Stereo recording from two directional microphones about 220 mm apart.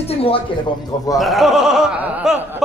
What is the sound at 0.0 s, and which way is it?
Music, 25° left (ahead or behind).